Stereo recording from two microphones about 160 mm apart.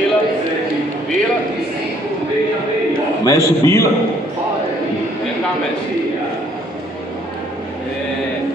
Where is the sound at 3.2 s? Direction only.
20° left (ahead or behind).